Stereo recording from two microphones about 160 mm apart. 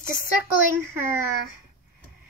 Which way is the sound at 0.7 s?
15° right (ahead or behind).